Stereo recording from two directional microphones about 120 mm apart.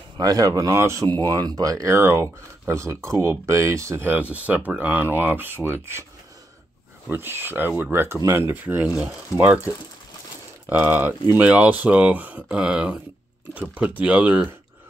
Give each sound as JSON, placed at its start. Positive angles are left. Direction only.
{"t": 0.2, "sound": "speech", "side_deg": -30}
{"t": 7.1, "sound": "speech", "side_deg": -15}
{"t": 10.7, "sound": "speech", "side_deg": -15}